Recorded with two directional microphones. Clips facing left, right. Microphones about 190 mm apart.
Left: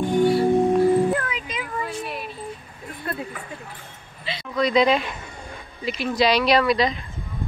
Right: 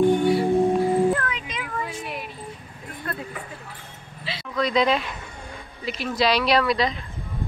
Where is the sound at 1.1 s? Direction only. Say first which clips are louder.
Left 1 dB; 10° left (ahead or behind).